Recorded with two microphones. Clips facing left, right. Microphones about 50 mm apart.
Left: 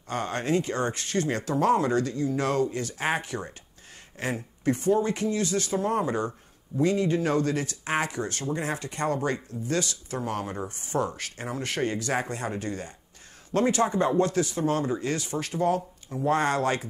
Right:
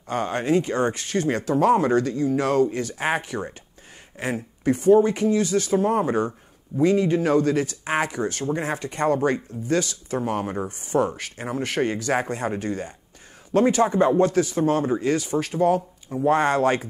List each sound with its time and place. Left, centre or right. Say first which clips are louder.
0.1 s speech: right 5 dB; centre
5.8 s speech: right 4 dB; right
13.7 s speech: right 3 dB; centre
13.9 s speech: right 5 dB; right
14.2 s speech: right 5 dB; centre
14.6 s speech: right 5 dB; right
15.0 s speech: right 7 dB; centre